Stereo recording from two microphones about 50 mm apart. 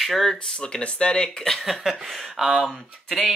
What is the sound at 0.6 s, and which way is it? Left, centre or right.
Speech, centre.